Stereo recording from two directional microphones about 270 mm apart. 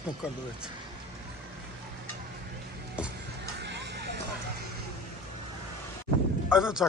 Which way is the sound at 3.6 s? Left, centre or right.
Right.